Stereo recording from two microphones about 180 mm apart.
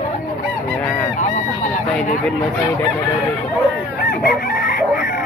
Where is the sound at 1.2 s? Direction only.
45° left (ahead or behind).